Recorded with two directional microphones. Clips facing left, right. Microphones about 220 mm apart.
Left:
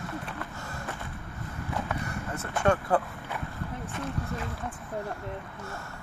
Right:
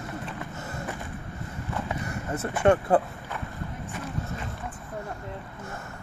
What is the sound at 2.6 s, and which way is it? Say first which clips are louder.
Speech: right 4 dB; 20° right (ahead or behind).